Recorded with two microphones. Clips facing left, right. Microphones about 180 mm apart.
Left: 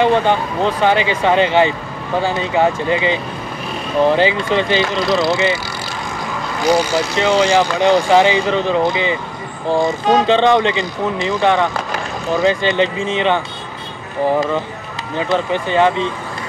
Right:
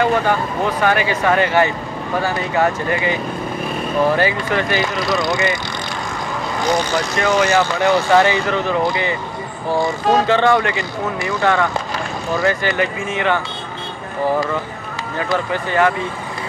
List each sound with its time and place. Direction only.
0.0 s speech: 25° left (ahead or behind)
6.7 s speech: 10° left (ahead or behind)
7.2 s speech: 25° left (ahead or behind)
15.1 s speech: 20° left (ahead or behind)